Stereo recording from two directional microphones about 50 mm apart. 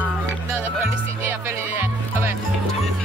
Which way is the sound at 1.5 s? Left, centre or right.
Right.